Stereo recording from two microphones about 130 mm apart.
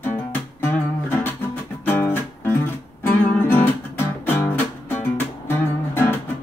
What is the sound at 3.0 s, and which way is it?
Guitar, 15° left (ahead or behind).